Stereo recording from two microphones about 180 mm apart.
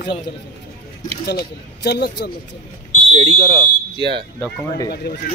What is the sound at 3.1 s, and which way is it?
Speech, 25° right (ahead or behind).